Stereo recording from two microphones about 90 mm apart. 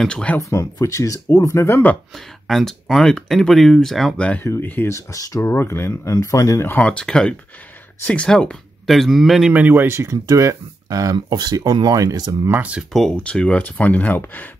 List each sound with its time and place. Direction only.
0.0 s speech: 10° left (ahead or behind)
0.4 s speech: 35° left (ahead or behind)
2.1 s speech: centre (ahead or behind)
4.5 s speech: 25° left (ahead or behind)
4.8 s speech: 35° left (ahead or behind)
6.8 s speech: 10° left (ahead or behind)
9.5 s speech: 20° right (ahead or behind); by 11.1 s 40° right (ahead or behind)
11.1 s speech: 55° right (ahead or behind)
12.4 s speech: 20° right (ahead or behind)
12.9 s speech: 10° left (ahead or behind)